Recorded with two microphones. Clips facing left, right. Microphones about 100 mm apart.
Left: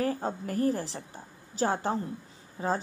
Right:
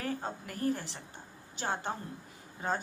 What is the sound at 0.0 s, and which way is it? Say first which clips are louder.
A woman's voice: left 7 dB; 40° left (ahead or behind).